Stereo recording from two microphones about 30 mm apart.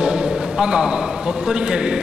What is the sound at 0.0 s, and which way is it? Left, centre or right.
A man's voice, right.